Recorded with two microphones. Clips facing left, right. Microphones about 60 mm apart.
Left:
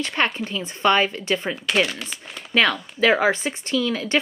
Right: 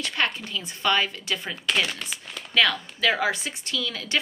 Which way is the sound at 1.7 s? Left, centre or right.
Centre.